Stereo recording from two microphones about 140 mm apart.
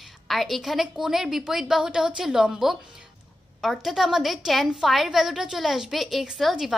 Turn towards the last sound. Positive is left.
turn(degrees=-5)  # may be behind; listen again after turning